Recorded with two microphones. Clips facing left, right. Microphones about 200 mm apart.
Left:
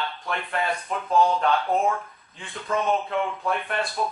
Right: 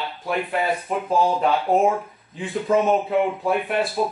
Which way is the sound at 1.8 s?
20° right (ahead or behind).